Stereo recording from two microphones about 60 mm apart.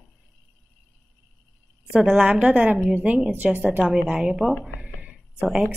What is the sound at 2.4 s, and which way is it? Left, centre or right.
Speech, right.